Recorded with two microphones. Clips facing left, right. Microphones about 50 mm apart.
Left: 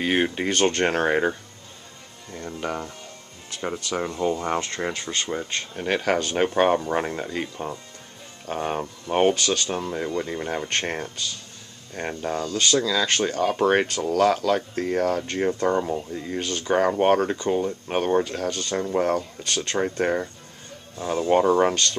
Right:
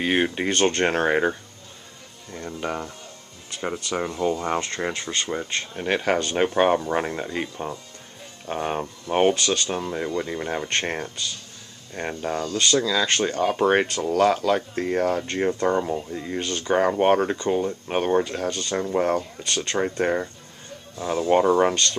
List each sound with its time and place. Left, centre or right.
0.0 s speech: centre
2.3 s speech: centre